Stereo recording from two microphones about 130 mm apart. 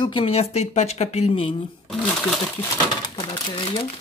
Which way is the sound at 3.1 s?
45° left (ahead or behind).